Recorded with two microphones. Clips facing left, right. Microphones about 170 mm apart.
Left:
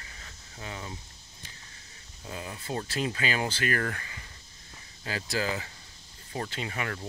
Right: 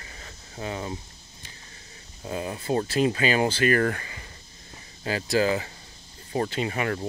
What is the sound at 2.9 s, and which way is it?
Speech, 20° right (ahead or behind).